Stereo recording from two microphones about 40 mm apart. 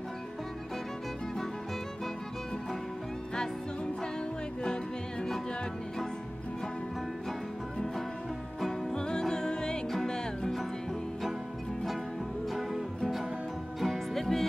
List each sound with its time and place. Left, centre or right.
8.9 s music: left
13.7 s music: centre